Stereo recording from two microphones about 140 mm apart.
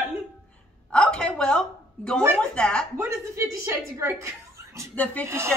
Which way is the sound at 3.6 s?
20° right (ahead or behind).